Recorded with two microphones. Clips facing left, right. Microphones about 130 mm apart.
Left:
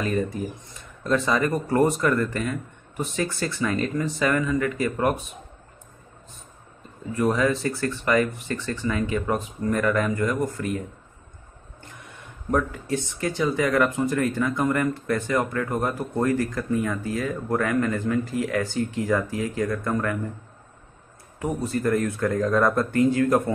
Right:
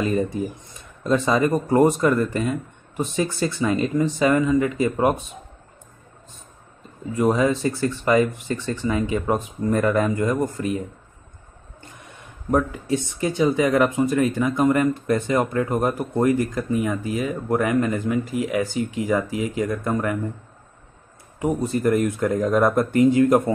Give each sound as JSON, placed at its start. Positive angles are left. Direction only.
{"t": 0.0, "sound": "speech", "side_deg": -20}
{"t": 7.2, "sound": "speech", "side_deg": -20}
{"t": 12.4, "sound": "speech", "side_deg": -15}
{"t": 21.4, "sound": "speech", "side_deg": -20}